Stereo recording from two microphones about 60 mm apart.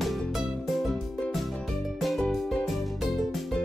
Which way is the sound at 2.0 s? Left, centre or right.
Centre.